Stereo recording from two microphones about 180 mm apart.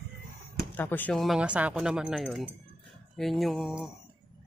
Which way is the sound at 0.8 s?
10° left (ahead or behind).